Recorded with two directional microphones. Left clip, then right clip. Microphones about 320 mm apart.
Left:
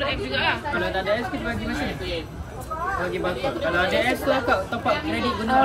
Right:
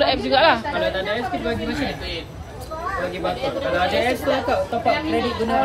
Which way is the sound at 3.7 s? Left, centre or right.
Centre.